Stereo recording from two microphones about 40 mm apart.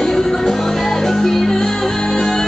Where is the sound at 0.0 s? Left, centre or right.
Centre.